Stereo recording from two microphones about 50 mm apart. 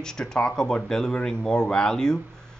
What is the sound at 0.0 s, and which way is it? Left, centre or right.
Speech, centre.